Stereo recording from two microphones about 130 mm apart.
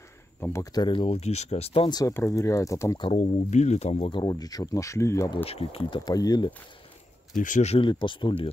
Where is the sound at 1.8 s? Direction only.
30° left (ahead or behind).